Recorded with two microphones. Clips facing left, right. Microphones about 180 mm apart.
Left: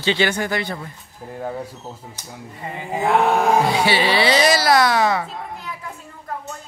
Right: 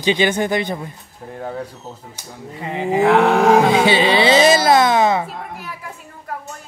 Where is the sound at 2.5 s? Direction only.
85° right.